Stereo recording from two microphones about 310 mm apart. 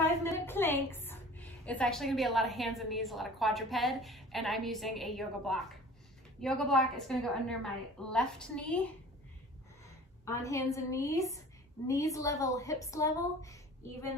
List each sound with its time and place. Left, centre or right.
0.0 s a sound: centre
1.7 s a woman's voice: centre
10.2 s a woman's voice: centre